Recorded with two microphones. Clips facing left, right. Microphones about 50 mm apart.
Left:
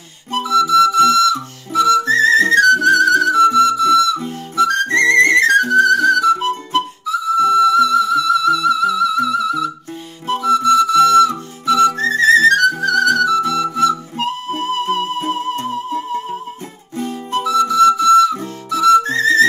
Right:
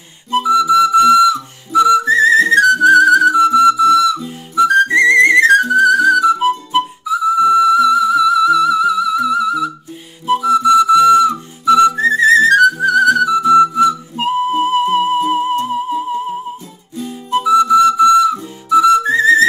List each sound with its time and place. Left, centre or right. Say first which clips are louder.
0.3 s whistle: right 2 dB; centre
2.5 s music: right 2 dB; centre
6.7 s whistle: right 2 dB; centre
12.8 s music: right 3 dB; centre
17.3 s whistle: right 6 dB; centre
18.7 s music: right 2 dB; centre